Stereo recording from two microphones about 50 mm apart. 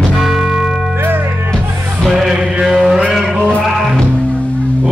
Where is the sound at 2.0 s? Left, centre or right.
Centre.